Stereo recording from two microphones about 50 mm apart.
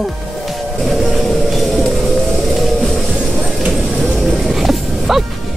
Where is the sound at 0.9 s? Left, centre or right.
Centre.